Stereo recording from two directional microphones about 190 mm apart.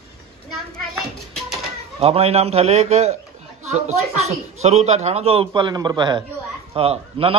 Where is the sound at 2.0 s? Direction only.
30° right (ahead or behind).